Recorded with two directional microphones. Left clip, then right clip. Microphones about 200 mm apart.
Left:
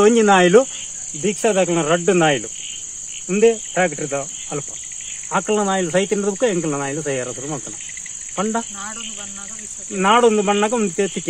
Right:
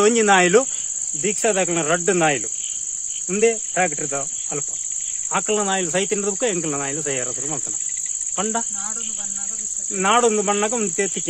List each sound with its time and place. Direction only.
0.0 s speech: 25° right (ahead or behind)
9.9 s speech: 20° right (ahead or behind)